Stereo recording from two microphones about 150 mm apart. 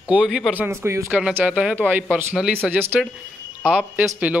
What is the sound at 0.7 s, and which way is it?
Speech, 15° right (ahead or behind).